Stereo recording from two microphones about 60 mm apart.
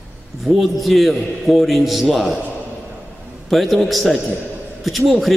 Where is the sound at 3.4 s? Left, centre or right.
Centre.